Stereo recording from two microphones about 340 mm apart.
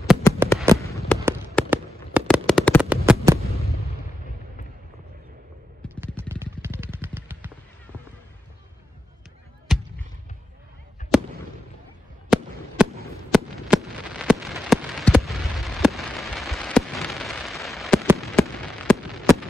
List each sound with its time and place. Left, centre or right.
0.0 s a sound: centre
1.5 s fireworks: centre
6.4 s a sound: centre
9.7 s basketball bounce: centre
11.0 s fireworks: left
13.0 s fireworks: centre